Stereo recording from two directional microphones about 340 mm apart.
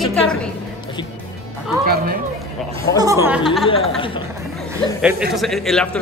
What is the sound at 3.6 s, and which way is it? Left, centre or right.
Speech, centre.